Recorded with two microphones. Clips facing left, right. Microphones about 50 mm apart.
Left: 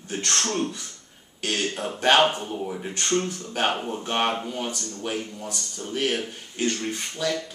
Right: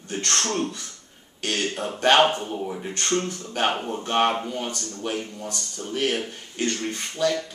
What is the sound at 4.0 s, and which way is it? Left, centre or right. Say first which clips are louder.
Speech: right 5 dB; centre.